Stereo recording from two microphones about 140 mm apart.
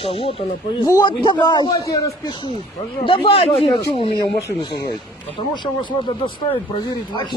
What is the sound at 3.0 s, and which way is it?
Speech, 35° left (ahead or behind).